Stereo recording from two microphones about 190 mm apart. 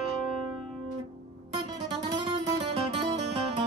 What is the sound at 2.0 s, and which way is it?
Music, 25° right (ahead or behind).